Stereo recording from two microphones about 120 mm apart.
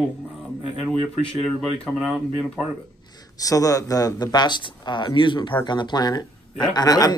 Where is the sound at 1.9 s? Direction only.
Centre (ahead or behind).